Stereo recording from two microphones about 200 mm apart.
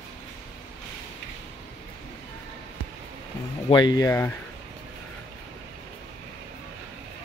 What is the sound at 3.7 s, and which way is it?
Speech, 20° left (ahead or behind).